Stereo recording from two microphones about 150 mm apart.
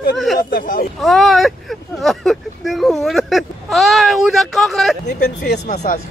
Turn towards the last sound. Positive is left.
turn(degrees=90)